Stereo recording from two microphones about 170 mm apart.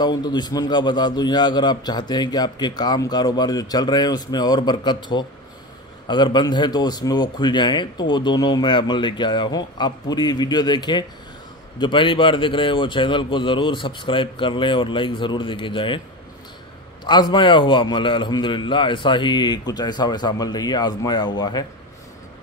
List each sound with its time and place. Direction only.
0.0 s a man's voice: 25° left (ahead or behind)
17.0 s a man's voice: 25° left (ahead or behind)